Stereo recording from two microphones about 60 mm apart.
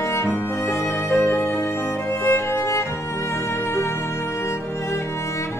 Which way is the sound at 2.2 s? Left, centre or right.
Left.